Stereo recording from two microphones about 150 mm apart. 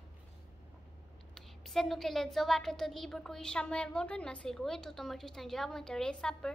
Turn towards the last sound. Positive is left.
turn(degrees=5)  # may be behind; listen again after turning